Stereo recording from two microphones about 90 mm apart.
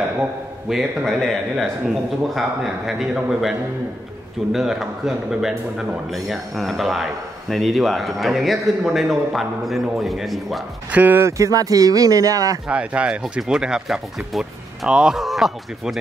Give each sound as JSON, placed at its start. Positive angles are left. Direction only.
{"t": 0.7, "sound": "a man's voice", "side_deg": 0}
{"t": 10.9, "sound": "speech", "side_deg": -20}
{"t": 11.1, "sound": "speech", "side_deg": -35}
{"t": 12.6, "sound": "a man's voice", "side_deg": -10}